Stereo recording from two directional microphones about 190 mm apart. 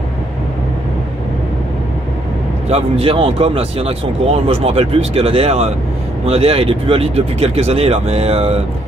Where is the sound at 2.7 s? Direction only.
30° right (ahead or behind).